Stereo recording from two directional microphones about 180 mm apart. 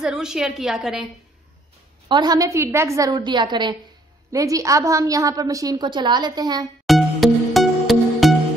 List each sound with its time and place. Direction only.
0.0 s a woman's voice: 5° right (ahead or behind)
2.0 s a woman's voice: 25° right (ahead or behind)
6.9 s music: centre (ahead or behind)